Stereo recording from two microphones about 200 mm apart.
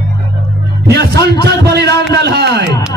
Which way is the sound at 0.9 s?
55° right (ahead or behind).